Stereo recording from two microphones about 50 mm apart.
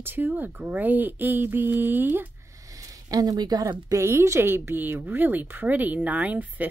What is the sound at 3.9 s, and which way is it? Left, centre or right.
Speech, right.